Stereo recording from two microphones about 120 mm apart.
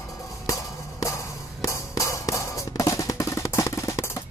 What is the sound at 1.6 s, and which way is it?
Drum, 25° left (ahead or behind).